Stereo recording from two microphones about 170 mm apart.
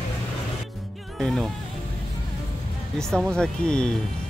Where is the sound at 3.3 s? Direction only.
5° left (ahead or behind).